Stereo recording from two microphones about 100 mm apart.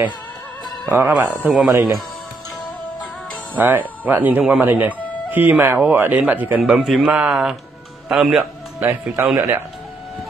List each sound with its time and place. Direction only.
0.8 s speech: 15° right (ahead or behind)
1.7 s speech: 30° right (ahead or behind)
3.5 s speech: 15° right (ahead or behind)
6.6 s speech: 5° right (ahead or behind)